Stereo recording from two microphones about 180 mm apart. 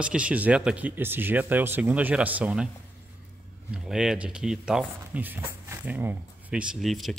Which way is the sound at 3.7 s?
5° right (ahead or behind).